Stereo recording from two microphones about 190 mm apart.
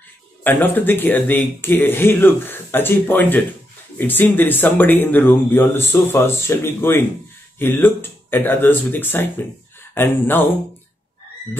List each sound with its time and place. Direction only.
0.4 s speech: 10° left (ahead or behind)